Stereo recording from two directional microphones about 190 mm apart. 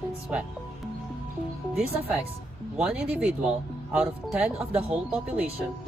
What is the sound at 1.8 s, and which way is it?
Speech, 10° right (ahead or behind).